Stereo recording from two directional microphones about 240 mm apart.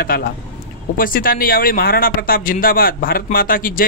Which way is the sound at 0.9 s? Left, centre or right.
Left.